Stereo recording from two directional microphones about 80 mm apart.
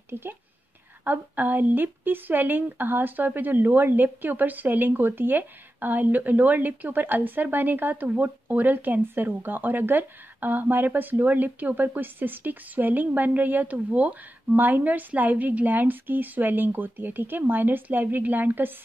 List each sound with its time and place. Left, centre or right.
0.1 s speech: right